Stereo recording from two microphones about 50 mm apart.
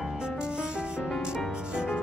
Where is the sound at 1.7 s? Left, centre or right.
Centre.